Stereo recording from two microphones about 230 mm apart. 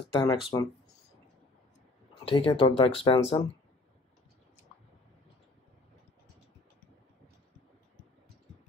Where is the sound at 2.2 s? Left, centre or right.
Left.